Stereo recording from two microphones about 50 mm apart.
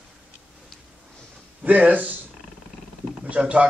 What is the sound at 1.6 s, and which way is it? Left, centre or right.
Speech, right.